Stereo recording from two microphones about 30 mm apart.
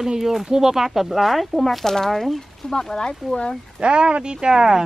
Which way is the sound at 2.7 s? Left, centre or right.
Left.